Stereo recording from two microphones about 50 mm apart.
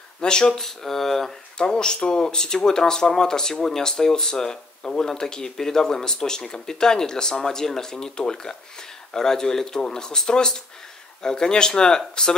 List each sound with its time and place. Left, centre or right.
0.2 s speech: centre
0.6 s speech: centre
1.6 s speech: centre